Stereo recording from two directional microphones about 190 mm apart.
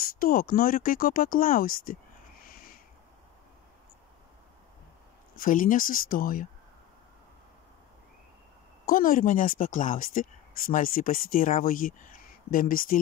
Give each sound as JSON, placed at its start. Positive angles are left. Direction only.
{"t": 0.0, "sound": "speech", "side_deg": 50}
{"t": 2.4, "sound": "a sound", "side_deg": 50}
{"t": 5.3, "sound": "speech", "side_deg": 45}
{"t": 8.8, "sound": "speech", "side_deg": 45}